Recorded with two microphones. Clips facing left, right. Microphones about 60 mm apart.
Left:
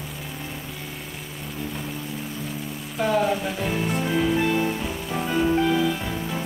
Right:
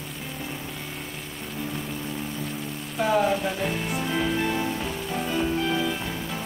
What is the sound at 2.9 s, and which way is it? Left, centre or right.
Music, centre.